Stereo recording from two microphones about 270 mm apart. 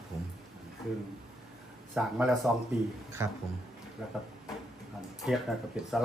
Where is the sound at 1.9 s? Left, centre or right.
Centre.